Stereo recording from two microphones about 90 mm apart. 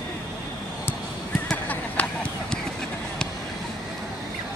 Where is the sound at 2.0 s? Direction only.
15° left (ahead or behind).